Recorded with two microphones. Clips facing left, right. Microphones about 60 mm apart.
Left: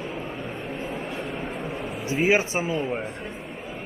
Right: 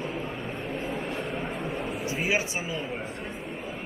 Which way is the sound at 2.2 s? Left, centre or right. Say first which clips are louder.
Left 8 dB; left.